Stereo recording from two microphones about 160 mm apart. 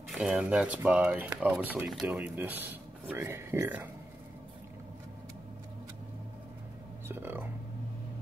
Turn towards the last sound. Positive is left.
turn(degrees=-15)  # may be behind; listen again after turning